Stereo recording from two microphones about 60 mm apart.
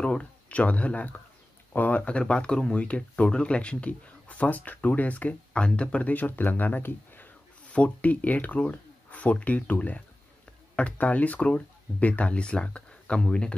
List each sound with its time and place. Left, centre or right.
0.0 s speech: centre; by 7.2 s left
7.6 s speech: left